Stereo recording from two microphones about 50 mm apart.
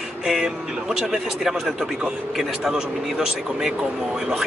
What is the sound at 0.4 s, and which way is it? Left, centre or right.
Speech, centre.